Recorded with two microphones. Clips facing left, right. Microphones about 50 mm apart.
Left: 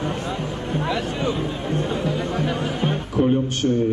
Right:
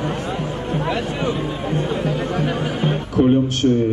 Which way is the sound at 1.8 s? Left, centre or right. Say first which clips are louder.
Right 2 dB; right.